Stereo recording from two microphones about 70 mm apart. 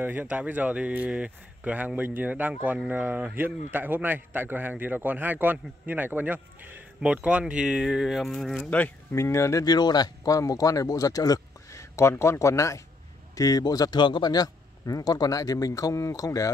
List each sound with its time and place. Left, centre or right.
0.0 s a man's voice: right; by 8.5 s centre
8.6 s speech: left
9.1 s speech: left
9.7 s speech: left
11.9 s speech: left
13.4 s speech: left